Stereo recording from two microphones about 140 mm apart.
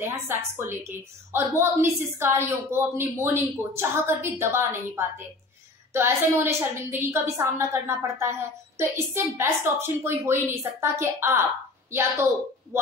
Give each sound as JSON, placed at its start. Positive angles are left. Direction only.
{"t": 0.0, "sound": "a woman's voice", "side_deg": -15}